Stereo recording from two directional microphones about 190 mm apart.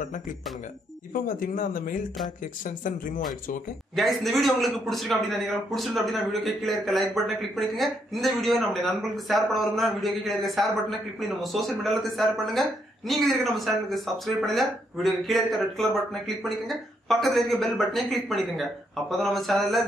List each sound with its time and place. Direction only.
1.1 s speech: 45° left (ahead or behind)
3.9 s a man's voice: centre (ahead or behind)